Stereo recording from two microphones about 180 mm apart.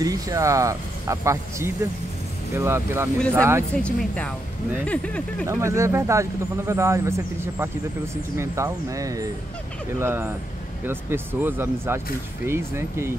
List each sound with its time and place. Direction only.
0.0 s speech: 20° right (ahead or behind)
3.7 s speech: 5° left (ahead or behind)
5.5 s speech: 15° right (ahead or behind)